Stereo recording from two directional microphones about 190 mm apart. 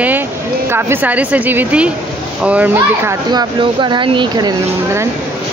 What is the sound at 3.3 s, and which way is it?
Speech, 25° right (ahead or behind).